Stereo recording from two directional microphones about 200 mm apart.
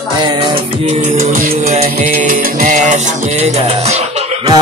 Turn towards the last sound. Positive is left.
turn(degrees=-30)  # may be behind; listen again after turning